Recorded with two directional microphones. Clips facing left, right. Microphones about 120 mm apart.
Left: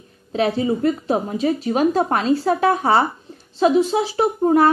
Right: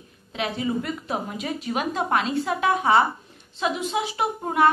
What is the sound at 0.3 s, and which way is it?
A woman's voice, 35° left (ahead or behind).